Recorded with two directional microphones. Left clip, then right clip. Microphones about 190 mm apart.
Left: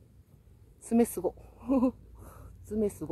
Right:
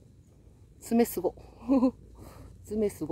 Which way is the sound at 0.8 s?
10° right (ahead or behind).